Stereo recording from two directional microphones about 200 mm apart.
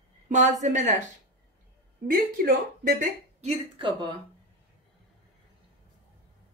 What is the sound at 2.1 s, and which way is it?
Speech, 45° right (ahead or behind).